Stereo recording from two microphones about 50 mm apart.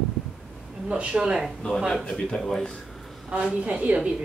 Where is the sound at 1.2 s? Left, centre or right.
Centre.